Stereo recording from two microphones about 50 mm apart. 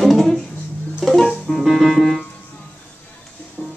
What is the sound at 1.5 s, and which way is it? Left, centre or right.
Music, centre.